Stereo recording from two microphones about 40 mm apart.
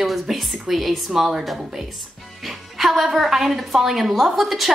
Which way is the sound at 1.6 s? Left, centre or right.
Centre.